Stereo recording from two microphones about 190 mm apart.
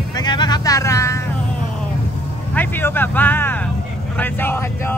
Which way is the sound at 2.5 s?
10° left (ahead or behind).